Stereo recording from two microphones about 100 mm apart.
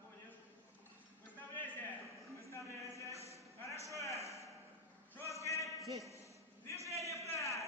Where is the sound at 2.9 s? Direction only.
30° left (ahead or behind).